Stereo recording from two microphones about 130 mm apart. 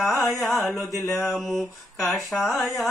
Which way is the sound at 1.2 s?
Centre (ahead or behind).